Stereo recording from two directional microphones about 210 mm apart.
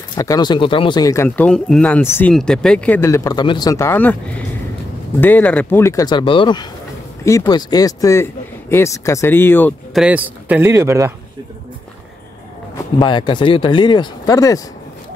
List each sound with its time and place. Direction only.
0.1 s speech: 20° left (ahead or behind)
10.0 s speech: 5° right (ahead or behind)
13.0 s speech: 20° left (ahead or behind)